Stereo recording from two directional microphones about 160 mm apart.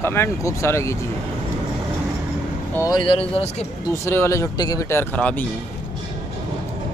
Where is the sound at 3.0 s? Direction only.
35° left (ahead or behind).